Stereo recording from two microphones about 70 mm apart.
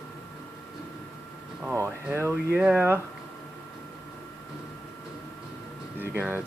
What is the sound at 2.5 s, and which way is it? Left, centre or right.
Speech, right.